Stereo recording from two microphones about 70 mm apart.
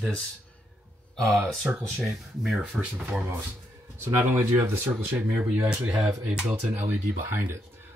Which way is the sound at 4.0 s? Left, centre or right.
Right.